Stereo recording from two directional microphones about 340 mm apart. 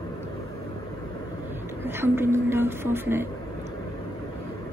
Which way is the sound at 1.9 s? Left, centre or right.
Centre.